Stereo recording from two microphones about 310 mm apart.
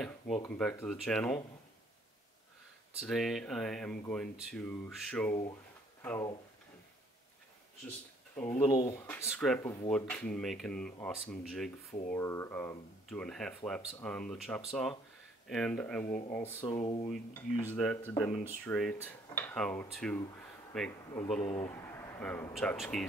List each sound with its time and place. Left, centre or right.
0.0 s speech: centre
3.0 s speech: centre
8.4 s speech: centre
16.1 s speech: left
16.3 s speech: centre
17.6 s speech: centre